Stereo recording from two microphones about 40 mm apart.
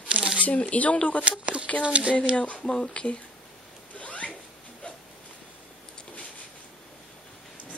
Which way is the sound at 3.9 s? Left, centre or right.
Left.